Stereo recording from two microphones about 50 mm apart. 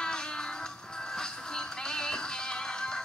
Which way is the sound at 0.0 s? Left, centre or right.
Centre.